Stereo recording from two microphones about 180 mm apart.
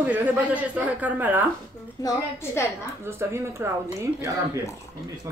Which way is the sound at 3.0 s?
15° right (ahead or behind).